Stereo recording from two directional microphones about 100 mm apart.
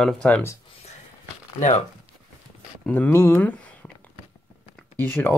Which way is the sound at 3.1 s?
25° left (ahead or behind).